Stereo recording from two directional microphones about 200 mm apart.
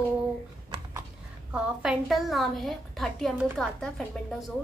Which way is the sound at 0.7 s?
25° right (ahead or behind).